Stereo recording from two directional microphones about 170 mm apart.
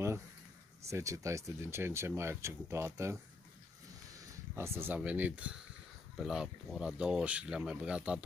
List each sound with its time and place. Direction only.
0.8 s speech: 20° right (ahead or behind)
4.2 s speech: 15° right (ahead or behind)